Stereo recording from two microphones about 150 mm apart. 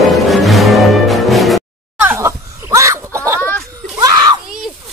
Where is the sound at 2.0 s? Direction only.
15° right (ahead or behind).